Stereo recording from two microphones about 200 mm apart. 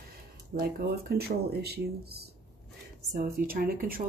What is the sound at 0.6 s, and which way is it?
Speech, 50° right (ahead or behind).